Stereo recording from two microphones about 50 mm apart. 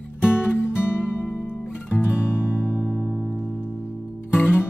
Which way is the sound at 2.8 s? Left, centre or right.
Centre.